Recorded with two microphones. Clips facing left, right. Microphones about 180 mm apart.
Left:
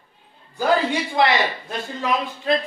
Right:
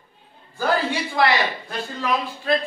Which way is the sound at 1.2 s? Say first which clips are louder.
Left 1 dB; 20° left (ahead or behind).